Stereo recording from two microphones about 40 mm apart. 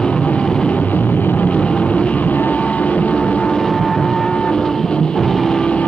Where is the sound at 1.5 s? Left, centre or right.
Left.